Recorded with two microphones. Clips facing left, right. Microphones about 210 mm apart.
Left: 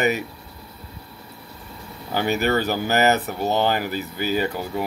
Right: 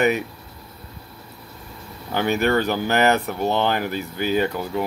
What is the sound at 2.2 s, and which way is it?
Speech, 55° right (ahead or behind).